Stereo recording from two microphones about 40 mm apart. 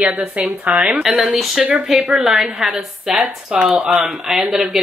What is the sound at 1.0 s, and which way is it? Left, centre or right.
A woman's voice, centre.